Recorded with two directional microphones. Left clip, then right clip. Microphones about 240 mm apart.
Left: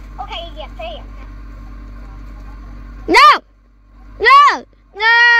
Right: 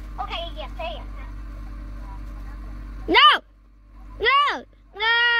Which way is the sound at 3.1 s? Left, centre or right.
Centre.